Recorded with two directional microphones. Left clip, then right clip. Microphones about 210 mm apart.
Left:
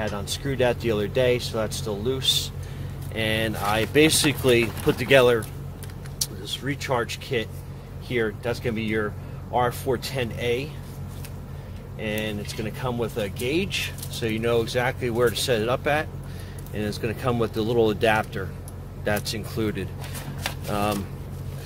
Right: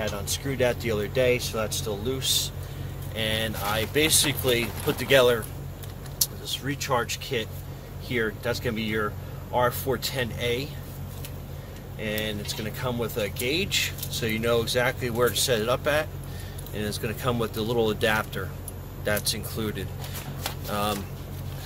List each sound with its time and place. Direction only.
0.0 s speech: 30° left (ahead or behind)
12.0 s speech: 25° left (ahead or behind)